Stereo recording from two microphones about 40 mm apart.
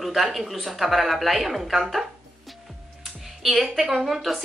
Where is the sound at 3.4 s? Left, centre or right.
Centre.